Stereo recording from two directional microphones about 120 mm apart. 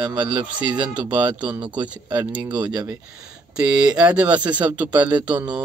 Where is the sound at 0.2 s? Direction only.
40° right (ahead or behind).